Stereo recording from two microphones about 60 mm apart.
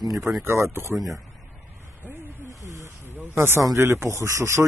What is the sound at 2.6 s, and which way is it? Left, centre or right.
Snake, right.